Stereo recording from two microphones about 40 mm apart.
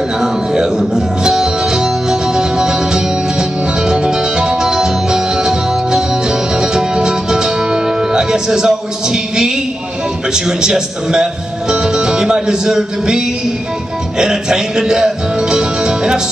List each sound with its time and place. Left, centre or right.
0.2 s music: centre
10.3 s a man's voice: centre
11.7 s music: centre